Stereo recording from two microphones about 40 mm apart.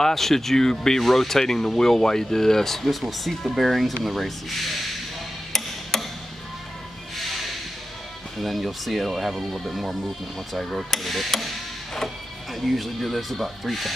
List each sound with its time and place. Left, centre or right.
0.0 s speech: centre
5.5 s a sound: centre
7.2 s music: centre
8.4 s speech: centre